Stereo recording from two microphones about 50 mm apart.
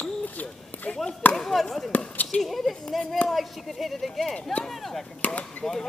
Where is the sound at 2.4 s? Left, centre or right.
Centre.